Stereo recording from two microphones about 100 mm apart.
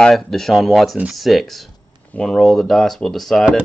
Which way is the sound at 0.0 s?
Centre (ahead or behind).